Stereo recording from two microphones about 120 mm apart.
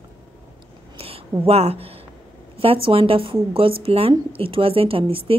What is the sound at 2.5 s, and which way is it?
A woman's voice, 50° right (ahead or behind).